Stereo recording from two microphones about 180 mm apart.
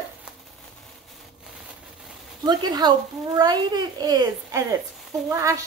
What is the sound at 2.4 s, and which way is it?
A child's voice, 20° right (ahead or behind).